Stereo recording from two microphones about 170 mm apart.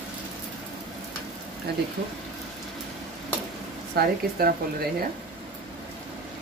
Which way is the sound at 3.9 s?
60° right (ahead or behind).